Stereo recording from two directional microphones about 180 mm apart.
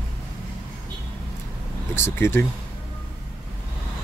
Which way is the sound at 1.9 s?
10° left (ahead or behind).